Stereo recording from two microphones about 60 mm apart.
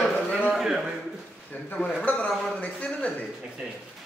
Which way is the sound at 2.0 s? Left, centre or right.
Left.